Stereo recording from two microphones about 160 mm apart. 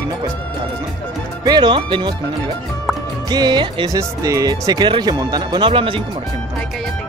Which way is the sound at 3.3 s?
25° right (ahead or behind).